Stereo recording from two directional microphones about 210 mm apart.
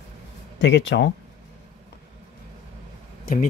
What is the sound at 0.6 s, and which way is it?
Speech, 55° left (ahead or behind).